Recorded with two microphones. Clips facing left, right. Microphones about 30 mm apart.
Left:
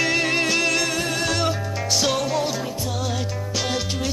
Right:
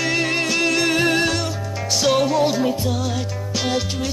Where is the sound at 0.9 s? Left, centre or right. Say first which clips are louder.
Right 7 dB; right.